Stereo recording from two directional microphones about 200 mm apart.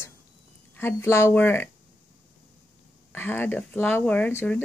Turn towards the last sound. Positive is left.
turn(degrees=10)  # may be behind; listen again after turning